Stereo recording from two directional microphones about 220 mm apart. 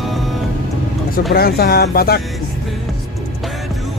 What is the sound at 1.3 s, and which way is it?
Speech, 45° left (ahead or behind).